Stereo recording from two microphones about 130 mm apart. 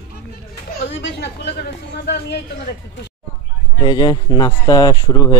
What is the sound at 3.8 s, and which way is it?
Speech, 35° left (ahead or behind).